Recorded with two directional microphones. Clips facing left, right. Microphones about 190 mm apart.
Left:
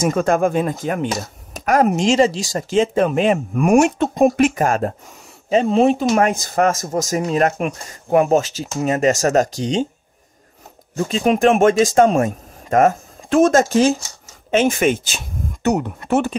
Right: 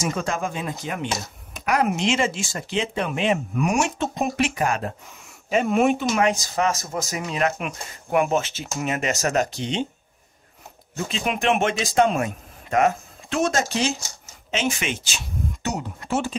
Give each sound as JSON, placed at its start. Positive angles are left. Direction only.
{"t": 0.0, "sound": "speech", "side_deg": 55}
{"t": 5.5, "sound": "speech", "side_deg": 30}
{"t": 6.0, "sound": "speech", "side_deg": 50}
{"t": 11.1, "sound": "speech", "side_deg": 45}